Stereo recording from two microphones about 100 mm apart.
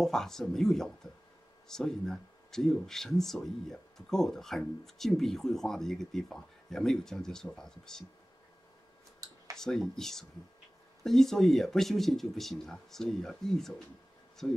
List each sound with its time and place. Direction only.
0.0 s speech: 5° left (ahead or behind)
9.2 s a sound: 40° right (ahead or behind)
9.6 s speech: 5° left (ahead or behind)